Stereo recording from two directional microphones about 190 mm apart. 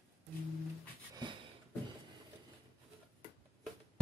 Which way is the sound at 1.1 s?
25° right (ahead or behind).